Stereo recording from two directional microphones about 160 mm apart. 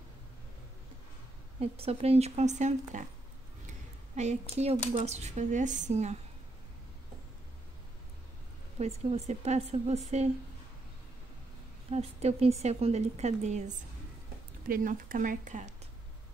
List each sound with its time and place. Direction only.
1.6 s a woman's voice: 40° right (ahead or behind)
8.7 s a woman's voice: 40° right (ahead or behind)
11.9 s a woman's voice: 40° right (ahead or behind)
14.7 s speech: 60° right (ahead or behind)